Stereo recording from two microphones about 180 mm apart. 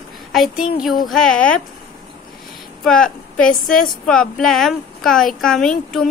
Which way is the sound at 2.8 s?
5° left (ahead or behind).